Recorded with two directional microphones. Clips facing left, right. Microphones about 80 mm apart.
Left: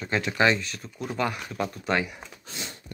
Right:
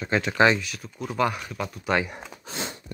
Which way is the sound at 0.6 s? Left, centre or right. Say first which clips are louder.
Right 1 dB; centre.